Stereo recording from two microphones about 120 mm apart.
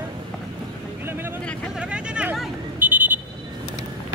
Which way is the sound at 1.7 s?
10° right (ahead or behind).